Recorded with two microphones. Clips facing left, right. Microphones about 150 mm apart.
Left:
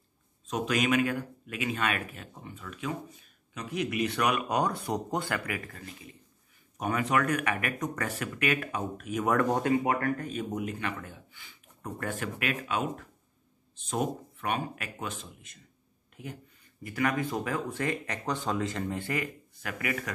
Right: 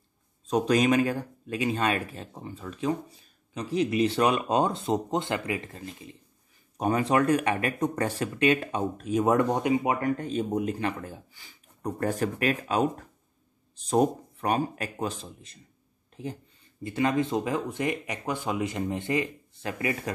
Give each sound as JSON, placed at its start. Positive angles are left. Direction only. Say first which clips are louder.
{"t": 0.5, "sound": "speech", "louder": "right 5 dB", "side_deg": -35}